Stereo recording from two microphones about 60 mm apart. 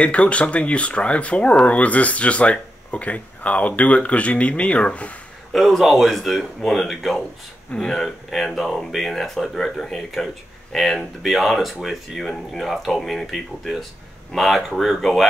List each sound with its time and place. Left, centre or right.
0.0 s speech: left
5.5 s speech: centre
7.7 s speech: centre
8.0 s speech: centre